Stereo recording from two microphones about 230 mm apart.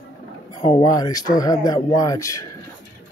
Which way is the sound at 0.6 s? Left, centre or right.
Centre.